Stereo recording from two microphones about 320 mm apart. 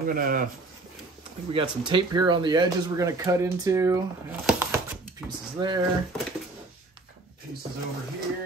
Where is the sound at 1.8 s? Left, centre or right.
Centre.